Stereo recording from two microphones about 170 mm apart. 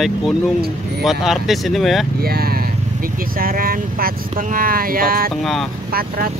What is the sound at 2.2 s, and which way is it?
Speech, 65° right (ahead or behind).